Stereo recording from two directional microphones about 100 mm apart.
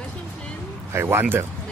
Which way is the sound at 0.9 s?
25° right (ahead or behind).